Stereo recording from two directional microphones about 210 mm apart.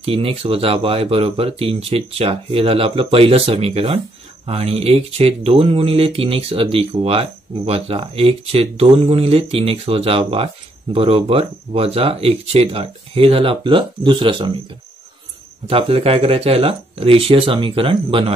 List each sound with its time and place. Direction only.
0.0 s speech: 25° right (ahead or behind)
15.6 s speech: 25° right (ahead or behind)